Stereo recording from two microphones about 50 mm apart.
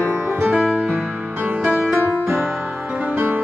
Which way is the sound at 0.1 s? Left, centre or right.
Right.